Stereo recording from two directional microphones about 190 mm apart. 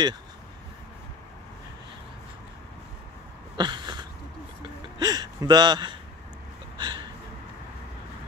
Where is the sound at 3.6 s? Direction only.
25° right (ahead or behind).